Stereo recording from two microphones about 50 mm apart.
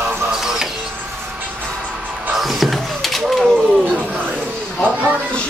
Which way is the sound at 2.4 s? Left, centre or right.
Centre.